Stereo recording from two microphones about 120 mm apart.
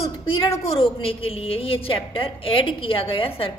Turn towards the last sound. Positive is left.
turn(degrees=50)  # may be behind; listen again after turning